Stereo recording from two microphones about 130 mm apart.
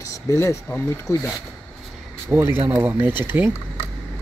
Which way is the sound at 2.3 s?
15° right (ahead or behind).